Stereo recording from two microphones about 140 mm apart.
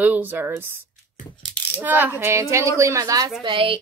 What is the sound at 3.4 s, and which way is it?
Speech, 40° right (ahead or behind).